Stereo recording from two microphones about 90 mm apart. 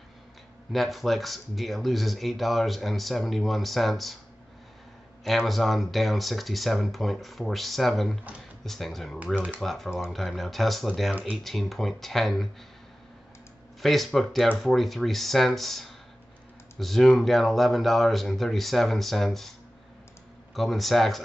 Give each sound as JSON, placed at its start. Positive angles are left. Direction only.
{"t": 0.7, "sound": "speech", "side_deg": 0}
{"t": 5.2, "sound": "speech", "side_deg": 0}
{"t": 9.2, "sound": "speech", "side_deg": -15}
{"t": 9.6, "sound": "speech", "side_deg": 5}
{"t": 13.7, "sound": "speech", "side_deg": 0}
{"t": 20.5, "sound": "speech", "side_deg": 0}